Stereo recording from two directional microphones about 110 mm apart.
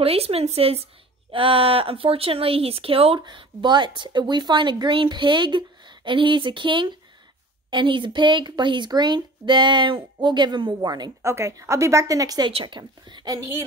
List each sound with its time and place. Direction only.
0.0 s speech: 65° right (ahead or behind)
3.2 s speech: 45° right (ahead or behind)
11.2 s a woman's voice: 25° right (ahead or behind)
12.4 s speech: 45° right (ahead or behind)